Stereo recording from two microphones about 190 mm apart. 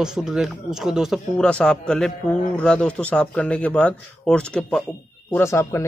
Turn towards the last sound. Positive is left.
turn(degrees=15)  # may be behind; listen again after turning